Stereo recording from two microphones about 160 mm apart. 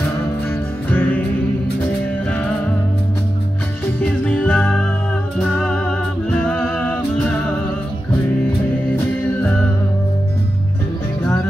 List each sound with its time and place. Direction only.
0.5 s music: 10° left (ahead or behind)
4.0 s music: 10° left (ahead or behind)
8.9 s music: 10° left (ahead or behind)